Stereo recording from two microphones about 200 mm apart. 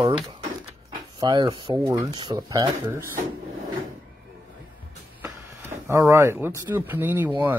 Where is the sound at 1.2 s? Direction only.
20° right (ahead or behind).